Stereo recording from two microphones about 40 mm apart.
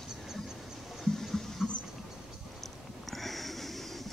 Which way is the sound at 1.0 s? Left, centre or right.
Centre.